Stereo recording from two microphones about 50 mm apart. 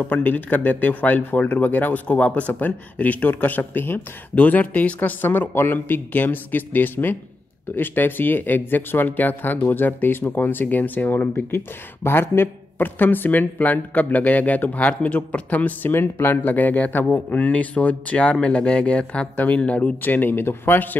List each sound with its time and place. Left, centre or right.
0.0 s speech: left
15.9 s speech: left
17.4 s speech: left
20.0 s speech: left